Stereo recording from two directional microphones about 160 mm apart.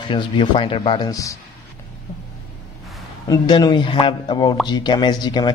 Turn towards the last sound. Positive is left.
turn(degrees=25)  # may be behind; listen again after turning